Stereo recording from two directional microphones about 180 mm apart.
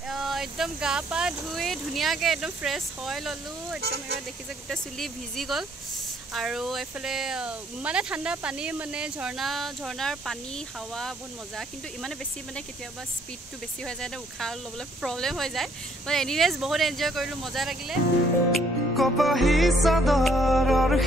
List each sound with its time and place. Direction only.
0.1 s speech: centre (ahead or behind)
3.8 s speech: 65° right (ahead or behind)
4.6 s speech: centre (ahead or behind)
13.8 s speech: 5° left (ahead or behind)
18.5 s music: centre (ahead or behind)